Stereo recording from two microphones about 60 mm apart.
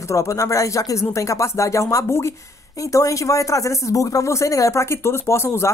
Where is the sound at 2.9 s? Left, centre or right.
Left.